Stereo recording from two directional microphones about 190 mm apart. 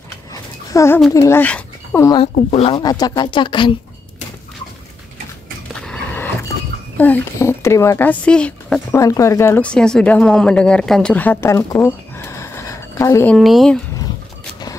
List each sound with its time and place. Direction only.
0.3 s babbling: 15° left (ahead or behind)
1.1 s speech: 15° left (ahead or behind)
2.3 s speech: 35° left (ahead or behind)
2.7 s speech: 20° left (ahead or behind)
5.8 s a sound: 5° left (ahead or behind)
7.0 s speech: 10° left (ahead or behind)
8.9 s a woman's voice: 15° left (ahead or behind)
13.4 s speech: centre (ahead or behind)